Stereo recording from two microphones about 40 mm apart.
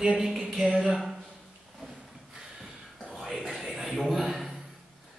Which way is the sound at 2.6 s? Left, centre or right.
Centre.